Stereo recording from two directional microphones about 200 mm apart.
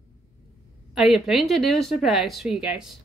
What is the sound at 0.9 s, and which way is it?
Speech, centre (ahead or behind).